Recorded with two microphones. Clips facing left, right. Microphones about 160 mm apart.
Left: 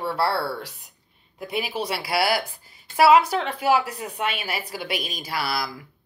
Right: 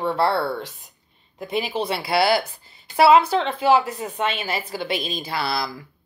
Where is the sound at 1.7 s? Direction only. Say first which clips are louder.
Right 4 dB; 25° right (ahead or behind).